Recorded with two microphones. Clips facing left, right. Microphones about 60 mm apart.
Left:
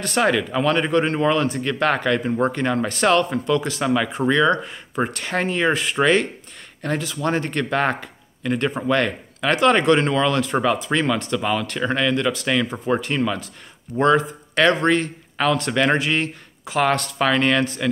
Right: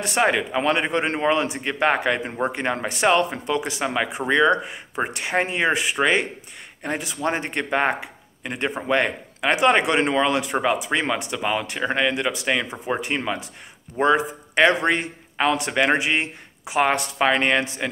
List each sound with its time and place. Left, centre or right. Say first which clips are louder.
0.0 s speech: left 1 dB; right